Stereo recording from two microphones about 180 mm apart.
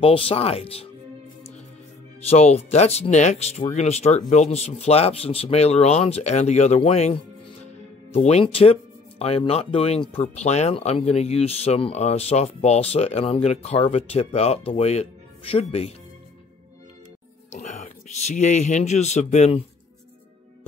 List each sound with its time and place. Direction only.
0.0 s speech: 30° left (ahead or behind)
2.2 s speech: 35° left (ahead or behind)
17.5 s music: 40° left (ahead or behind)
18.2 s speech: 40° left (ahead or behind)